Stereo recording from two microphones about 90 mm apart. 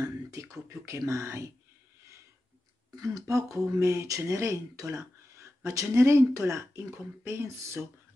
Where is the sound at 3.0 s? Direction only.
35° right (ahead or behind).